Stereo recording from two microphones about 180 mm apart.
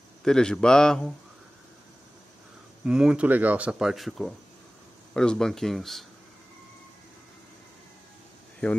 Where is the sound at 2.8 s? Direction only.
5° right (ahead or behind).